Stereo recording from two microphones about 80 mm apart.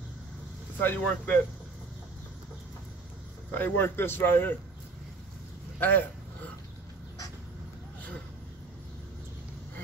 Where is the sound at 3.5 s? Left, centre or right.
Left.